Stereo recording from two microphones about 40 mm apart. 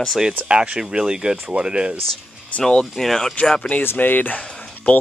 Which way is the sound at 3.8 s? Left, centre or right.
Left.